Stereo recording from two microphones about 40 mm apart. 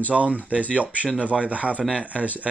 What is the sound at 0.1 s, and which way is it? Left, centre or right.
Speech, right.